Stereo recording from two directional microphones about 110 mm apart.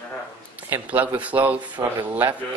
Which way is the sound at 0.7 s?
15° right (ahead or behind).